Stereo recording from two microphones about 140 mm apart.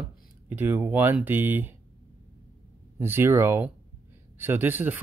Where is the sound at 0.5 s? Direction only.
15° right (ahead or behind).